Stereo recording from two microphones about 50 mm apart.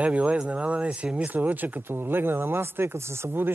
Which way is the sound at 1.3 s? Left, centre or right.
Right.